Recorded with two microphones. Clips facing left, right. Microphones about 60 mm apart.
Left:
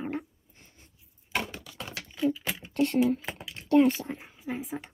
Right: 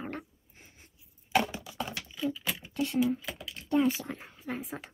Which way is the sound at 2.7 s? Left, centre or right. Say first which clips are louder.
Left 4 dB; left.